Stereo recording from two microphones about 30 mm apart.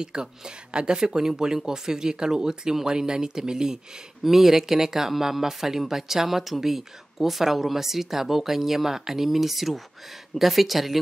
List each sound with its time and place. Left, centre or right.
0.0 s speech: right
4.2 s speech: centre